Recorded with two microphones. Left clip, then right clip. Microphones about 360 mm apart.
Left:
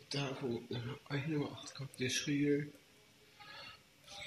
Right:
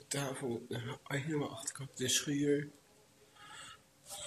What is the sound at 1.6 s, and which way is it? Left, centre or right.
Speech, right.